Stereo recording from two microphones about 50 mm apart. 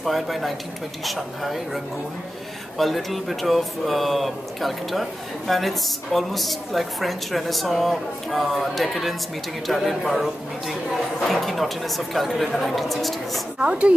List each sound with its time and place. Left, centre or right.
0.0 s speech: centre
2.8 s speech: centre
13.6 s speech: right